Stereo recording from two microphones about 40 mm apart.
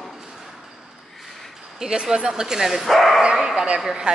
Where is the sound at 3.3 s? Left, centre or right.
Centre.